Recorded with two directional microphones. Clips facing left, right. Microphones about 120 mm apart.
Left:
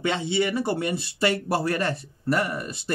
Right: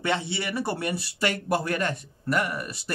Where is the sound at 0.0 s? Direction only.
20° left (ahead or behind).